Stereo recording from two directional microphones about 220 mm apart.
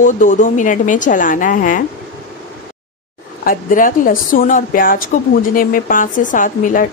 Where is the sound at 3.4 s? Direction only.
40° left (ahead or behind).